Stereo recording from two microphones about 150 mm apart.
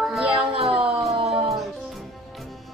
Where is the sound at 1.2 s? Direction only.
Centre (ahead or behind).